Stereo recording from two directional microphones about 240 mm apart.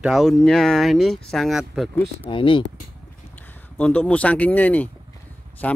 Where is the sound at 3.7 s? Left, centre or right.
Centre.